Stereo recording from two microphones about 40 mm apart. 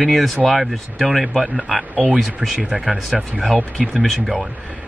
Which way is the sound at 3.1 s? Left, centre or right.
Right.